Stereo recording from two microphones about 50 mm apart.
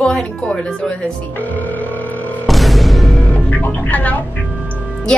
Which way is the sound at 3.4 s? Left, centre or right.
Left.